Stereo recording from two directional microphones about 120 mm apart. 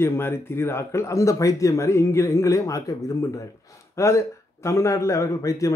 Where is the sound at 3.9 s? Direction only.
25° left (ahead or behind).